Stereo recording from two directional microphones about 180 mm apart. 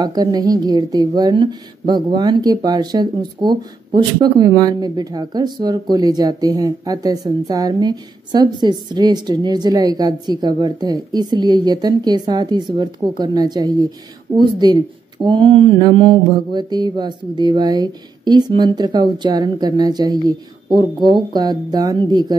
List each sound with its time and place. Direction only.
0.0 s a woman's voice: 20° right (ahead or behind)